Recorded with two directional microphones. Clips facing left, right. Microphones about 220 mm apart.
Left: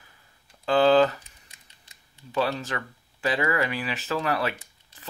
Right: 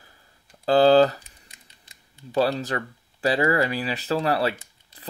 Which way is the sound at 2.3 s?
35° right (ahead or behind).